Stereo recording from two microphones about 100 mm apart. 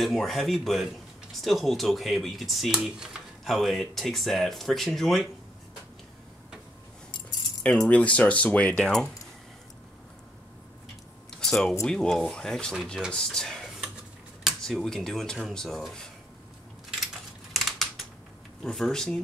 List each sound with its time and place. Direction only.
0.0 s speech: centre (ahead or behind)
7.1 s keys jangling: 50° left (ahead or behind)
7.9 s speech: 15° left (ahead or behind)
11.2 s a sound: 5° left (ahead or behind)
11.8 s speech: 5° left (ahead or behind)
17.5 s typing: centre (ahead or behind)
18.6 s speech: 5° left (ahead or behind)